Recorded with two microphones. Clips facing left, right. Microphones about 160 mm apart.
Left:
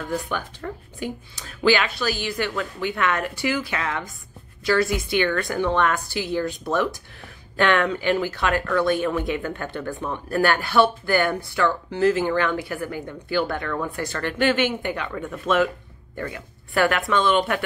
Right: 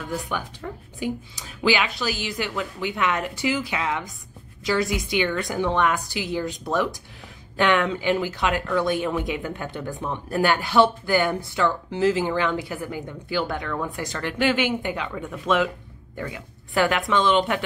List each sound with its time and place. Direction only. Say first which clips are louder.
0.3 s speech: left 1 dB; 10° right (ahead or behind)